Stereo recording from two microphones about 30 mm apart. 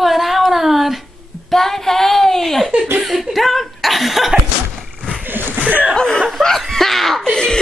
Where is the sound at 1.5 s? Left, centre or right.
Centre.